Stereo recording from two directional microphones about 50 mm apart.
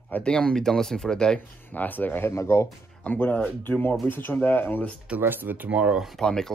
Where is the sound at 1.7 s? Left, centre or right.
Left.